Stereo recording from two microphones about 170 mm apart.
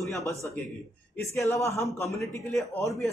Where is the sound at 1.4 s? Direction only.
15° left (ahead or behind).